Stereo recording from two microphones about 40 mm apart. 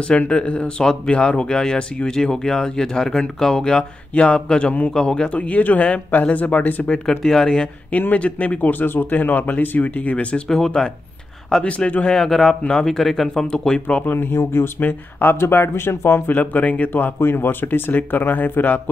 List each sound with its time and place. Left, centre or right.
0.3 s speech: left
4.1 s speech: left
5.3 s speech: left
7.1 s speech: centre
8.1 s speech: left
10.5 s speech: centre
11.6 s speech: left
12.1 s speech: centre
13.5 s speech: left
14.1 s speech: left
14.8 s speech: left
15.3 s speech: left
16.3 s speech: left
17.2 s speech: left